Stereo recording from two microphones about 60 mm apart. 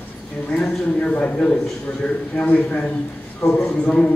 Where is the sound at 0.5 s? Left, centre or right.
Left.